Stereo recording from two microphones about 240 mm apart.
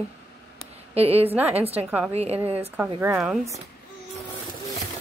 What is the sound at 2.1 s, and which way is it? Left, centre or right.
Speech, right.